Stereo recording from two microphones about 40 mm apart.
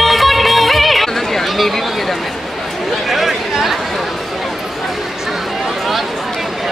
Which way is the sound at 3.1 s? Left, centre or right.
Centre.